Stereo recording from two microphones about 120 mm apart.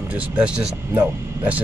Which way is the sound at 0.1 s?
10° right (ahead or behind).